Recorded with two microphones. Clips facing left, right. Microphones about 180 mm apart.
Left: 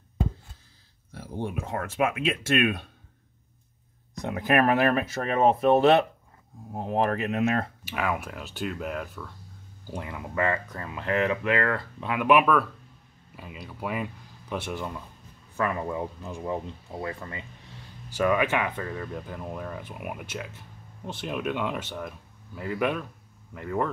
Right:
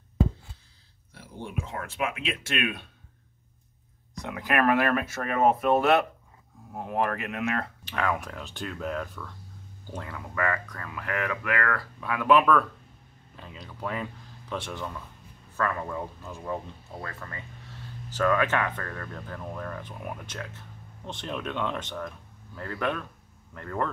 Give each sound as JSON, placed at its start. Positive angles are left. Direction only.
{"t": 1.1, "sound": "speech", "side_deg": 50}
{"t": 4.3, "sound": "speech", "side_deg": 25}
{"t": 7.8, "sound": "speech", "side_deg": 5}